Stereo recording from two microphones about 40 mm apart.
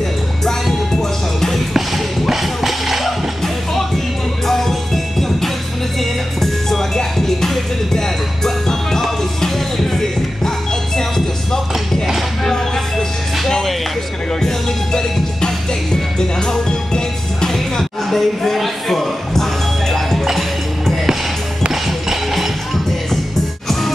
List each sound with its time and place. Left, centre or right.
2.2 s music: centre
4.5 s music: centre
13.5 s music: centre
14.4 s music: centre
22.1 s music: centre